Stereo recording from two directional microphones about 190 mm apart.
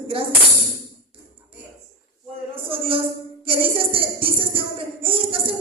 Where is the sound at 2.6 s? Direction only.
30° right (ahead or behind).